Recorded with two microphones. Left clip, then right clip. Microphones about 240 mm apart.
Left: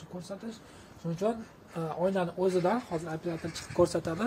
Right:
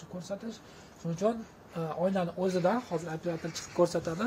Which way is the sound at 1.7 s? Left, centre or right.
Centre.